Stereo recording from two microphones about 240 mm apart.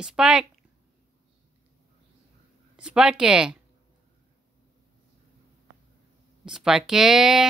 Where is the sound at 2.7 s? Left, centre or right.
Centre.